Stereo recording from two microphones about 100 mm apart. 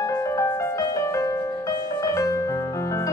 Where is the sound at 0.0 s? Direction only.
30° left (ahead or behind).